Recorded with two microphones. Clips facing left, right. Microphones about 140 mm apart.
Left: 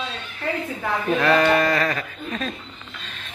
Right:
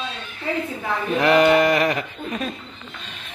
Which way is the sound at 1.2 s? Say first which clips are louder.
Right 4 dB; 20° right (ahead or behind).